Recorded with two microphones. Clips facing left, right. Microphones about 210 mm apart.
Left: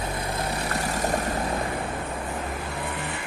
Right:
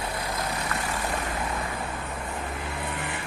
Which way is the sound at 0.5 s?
40° left (ahead or behind).